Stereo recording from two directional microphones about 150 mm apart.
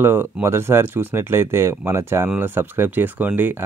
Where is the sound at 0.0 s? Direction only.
15° right (ahead or behind).